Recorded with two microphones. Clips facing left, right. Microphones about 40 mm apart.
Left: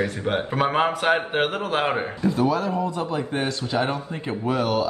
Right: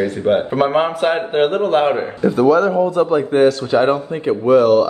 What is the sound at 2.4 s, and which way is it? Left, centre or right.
Speech, right.